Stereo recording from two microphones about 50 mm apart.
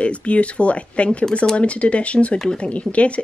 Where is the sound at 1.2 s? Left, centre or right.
Centre.